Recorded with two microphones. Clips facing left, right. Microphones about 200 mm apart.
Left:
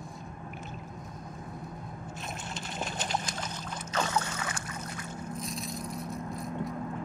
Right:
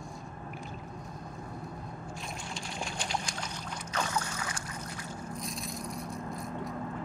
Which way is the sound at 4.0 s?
25° left (ahead or behind).